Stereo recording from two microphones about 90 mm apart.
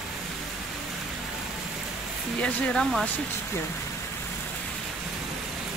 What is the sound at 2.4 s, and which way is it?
Speech, 5° left (ahead or behind).